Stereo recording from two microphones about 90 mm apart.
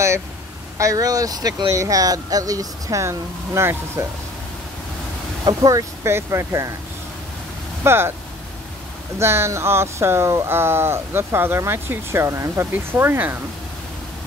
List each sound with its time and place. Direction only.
0.7 s speech: 40° right (ahead or behind)
5.4 s speech: 45° right (ahead or behind)
7.8 s speech: 25° right (ahead or behind)
9.2 s speech: 30° right (ahead or behind)